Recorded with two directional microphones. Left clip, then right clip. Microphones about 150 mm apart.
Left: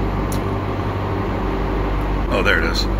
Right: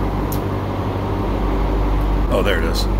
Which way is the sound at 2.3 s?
20° right (ahead or behind).